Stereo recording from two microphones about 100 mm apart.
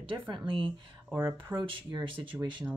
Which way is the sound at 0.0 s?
55° right (ahead or behind).